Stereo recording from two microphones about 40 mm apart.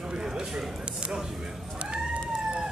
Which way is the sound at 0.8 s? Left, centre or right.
Right.